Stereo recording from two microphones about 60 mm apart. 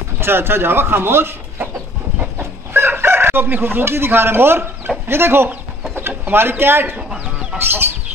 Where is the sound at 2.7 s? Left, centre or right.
Right.